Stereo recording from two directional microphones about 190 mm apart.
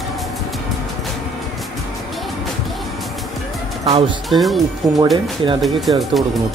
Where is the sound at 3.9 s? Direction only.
30° right (ahead or behind).